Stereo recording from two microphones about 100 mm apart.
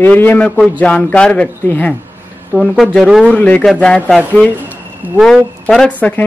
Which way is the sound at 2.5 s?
Centre (ahead or behind).